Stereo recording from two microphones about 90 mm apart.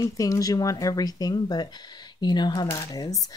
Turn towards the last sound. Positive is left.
turn(degrees=45)  # may be behind; listen again after turning